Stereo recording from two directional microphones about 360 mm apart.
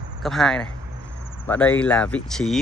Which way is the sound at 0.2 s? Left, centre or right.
Centre.